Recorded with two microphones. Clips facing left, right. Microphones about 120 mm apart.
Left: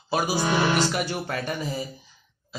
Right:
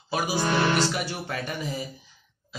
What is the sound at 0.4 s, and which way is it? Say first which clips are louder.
Music: right 1 dB; 5° left (ahead or behind).